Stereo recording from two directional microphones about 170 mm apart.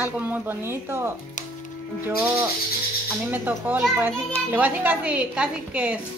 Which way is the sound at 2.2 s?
15° right (ahead or behind).